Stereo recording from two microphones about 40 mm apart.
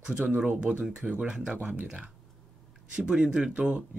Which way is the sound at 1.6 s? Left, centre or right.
Right.